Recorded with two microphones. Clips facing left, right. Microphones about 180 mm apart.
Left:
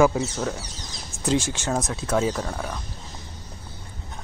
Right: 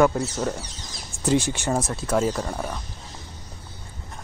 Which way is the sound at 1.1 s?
35° right (ahead or behind).